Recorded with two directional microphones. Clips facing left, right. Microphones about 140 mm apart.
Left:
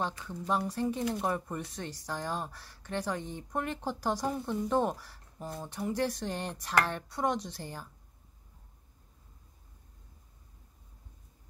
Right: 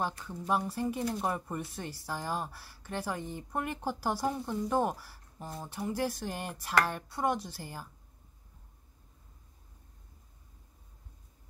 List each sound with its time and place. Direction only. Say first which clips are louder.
0.5 s speech: even; 10° right (ahead or behind)